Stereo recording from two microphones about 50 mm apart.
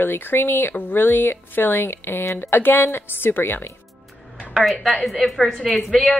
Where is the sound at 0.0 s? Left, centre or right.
Left.